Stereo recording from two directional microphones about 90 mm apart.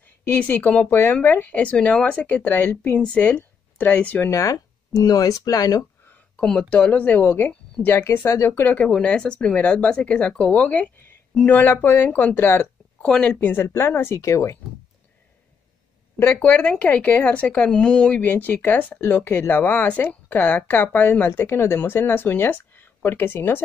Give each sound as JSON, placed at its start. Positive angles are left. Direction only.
{"t": 0.2, "sound": "speech", "side_deg": 20}
{"t": 4.3, "sound": "speech", "side_deg": 35}
{"t": 6.3, "sound": "speech", "side_deg": 10}
{"t": 8.7, "sound": "speech", "side_deg": 10}
{"t": 13.0, "sound": "speech", "side_deg": 10}
{"t": 16.3, "sound": "speech", "side_deg": 15}